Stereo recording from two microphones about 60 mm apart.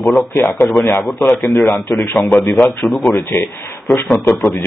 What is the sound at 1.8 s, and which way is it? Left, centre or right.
Speech, left.